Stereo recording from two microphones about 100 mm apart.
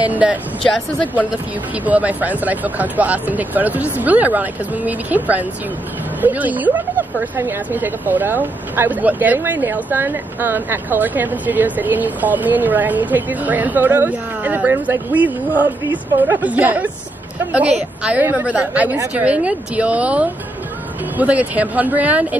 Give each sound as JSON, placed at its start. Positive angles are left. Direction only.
{"t": 0.0, "sound": "speech", "side_deg": -15}
{"t": 1.9, "sound": "a woman's voice", "side_deg": -15}
{"t": 15.6, "sound": "a woman's voice", "side_deg": 50}
{"t": 16.3, "sound": "speech", "side_deg": -15}